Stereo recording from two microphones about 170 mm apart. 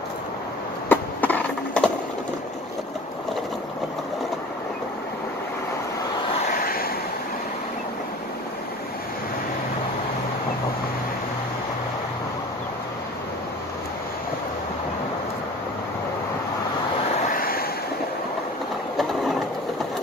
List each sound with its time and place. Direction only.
0.8 s a sound: 10° left (ahead or behind)
6.5 s waves: 60° left (ahead or behind)
17.2 s waves: 55° left (ahead or behind)